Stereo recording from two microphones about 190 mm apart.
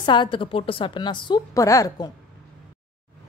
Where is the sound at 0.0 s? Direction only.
25° left (ahead or behind).